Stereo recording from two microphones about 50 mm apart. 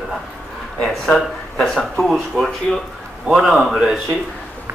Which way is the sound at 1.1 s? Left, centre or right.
Centre.